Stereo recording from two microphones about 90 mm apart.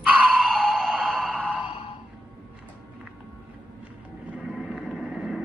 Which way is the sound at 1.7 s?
70° left (ahead or behind).